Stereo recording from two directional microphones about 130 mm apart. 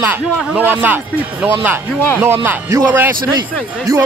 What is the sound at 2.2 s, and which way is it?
Speech, 15° right (ahead or behind).